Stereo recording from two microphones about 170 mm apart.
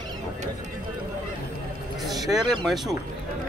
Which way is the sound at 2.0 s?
Centre (ahead or behind).